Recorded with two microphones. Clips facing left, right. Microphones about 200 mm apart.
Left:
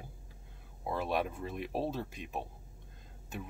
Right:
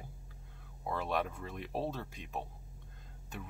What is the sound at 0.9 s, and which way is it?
Speech, 10° left (ahead or behind).